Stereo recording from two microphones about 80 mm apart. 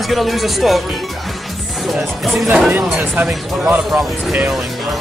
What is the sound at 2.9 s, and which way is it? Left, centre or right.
Speech, centre.